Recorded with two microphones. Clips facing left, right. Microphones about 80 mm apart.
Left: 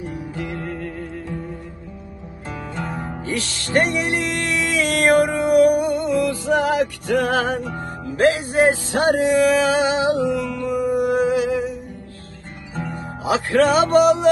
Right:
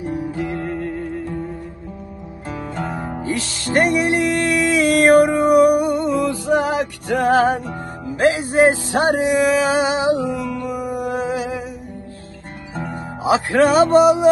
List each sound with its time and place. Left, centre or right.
0.0 s music: right
2.8 s music: right
13.2 s music: right